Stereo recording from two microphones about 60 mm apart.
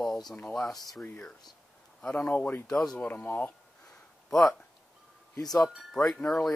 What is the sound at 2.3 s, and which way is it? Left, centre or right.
Speech, left.